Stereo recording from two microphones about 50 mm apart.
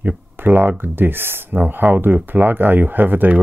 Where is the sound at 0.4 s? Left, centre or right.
Right.